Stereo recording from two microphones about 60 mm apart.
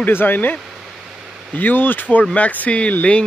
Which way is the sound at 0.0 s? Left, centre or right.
Left.